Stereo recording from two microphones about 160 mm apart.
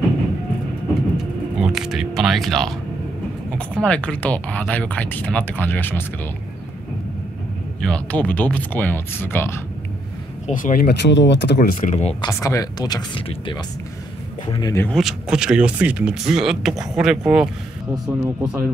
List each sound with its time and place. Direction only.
1.1 s a sound: 5° right (ahead or behind)
3.5 s speech: 5° left (ahead or behind)
7.8 s speech: 5° left (ahead or behind)
10.4 s speech: 55° left (ahead or behind); by 11.7 s 90° left
11.9 s speech: 45° left (ahead or behind)
12.2 s speech: 20° left (ahead or behind)
14.9 s speech: centre (ahead or behind)